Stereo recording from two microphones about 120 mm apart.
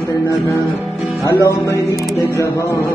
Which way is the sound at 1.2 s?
25° left (ahead or behind).